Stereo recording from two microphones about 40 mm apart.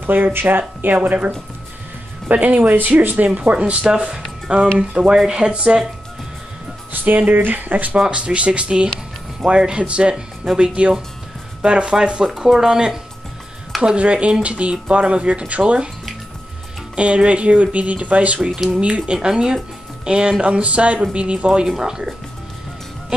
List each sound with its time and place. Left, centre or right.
0.0 s speech: right
3.9 s speech: right
5.1 s speech: centre
7.2 s speech: right
8.1 s speech: right
13.9 s speech: right
16.9 s speech: right
21.6 s speech: centre